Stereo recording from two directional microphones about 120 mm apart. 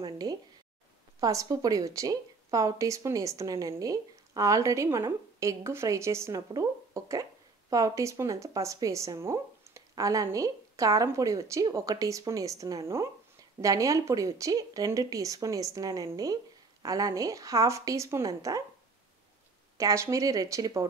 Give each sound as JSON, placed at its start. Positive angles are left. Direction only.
{"t": 0.0, "sound": "a sound", "side_deg": -35}
{"t": 1.2, "sound": "a woman's voice", "side_deg": -30}
{"t": 19.8, "sound": "a woman's voice", "side_deg": -25}